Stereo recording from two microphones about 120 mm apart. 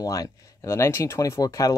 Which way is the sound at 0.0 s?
30° left (ahead or behind).